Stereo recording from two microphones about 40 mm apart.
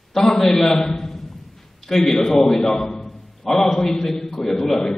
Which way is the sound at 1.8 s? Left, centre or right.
Centre.